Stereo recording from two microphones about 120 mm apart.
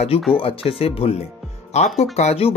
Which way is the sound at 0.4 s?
55° left (ahead or behind).